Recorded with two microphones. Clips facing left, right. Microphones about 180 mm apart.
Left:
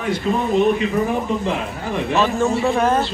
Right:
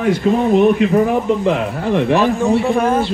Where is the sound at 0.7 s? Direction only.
60° right (ahead or behind).